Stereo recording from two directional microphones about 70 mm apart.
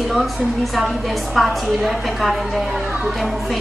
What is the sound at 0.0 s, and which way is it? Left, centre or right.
A woman's voice, centre.